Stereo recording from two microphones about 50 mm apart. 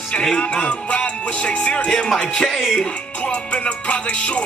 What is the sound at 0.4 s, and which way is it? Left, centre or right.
Music, left.